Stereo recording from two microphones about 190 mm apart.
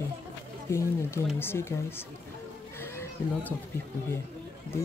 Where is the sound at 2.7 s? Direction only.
15° left (ahead or behind).